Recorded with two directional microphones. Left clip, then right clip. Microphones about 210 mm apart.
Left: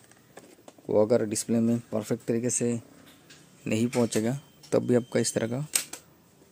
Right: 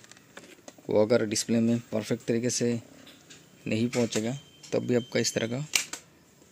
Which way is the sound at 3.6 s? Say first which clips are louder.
Left 1 dB; 5° left (ahead or behind).